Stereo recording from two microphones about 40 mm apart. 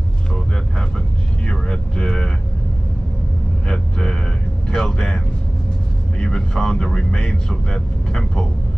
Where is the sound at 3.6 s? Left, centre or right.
Centre.